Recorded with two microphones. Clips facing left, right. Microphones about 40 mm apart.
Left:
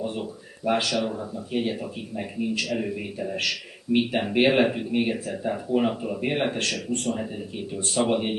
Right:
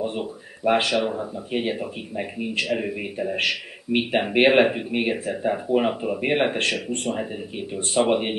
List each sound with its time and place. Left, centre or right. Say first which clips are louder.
0.0 s speech: right 3 dB; right